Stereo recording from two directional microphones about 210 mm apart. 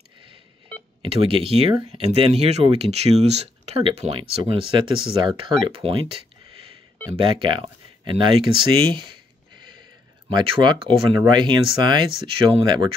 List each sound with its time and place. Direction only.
1.1 s speech: 25° right (ahead or behind)
7.2 s speech: 25° right (ahead or behind)
9.6 s a sound: 20° right (ahead or behind)
10.3 s speech: 20° right (ahead or behind)